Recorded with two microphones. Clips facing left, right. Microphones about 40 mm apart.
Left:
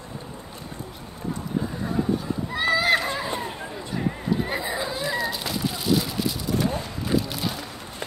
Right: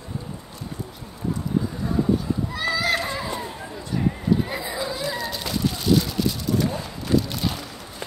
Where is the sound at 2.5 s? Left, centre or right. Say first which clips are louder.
Left 4 dB; left.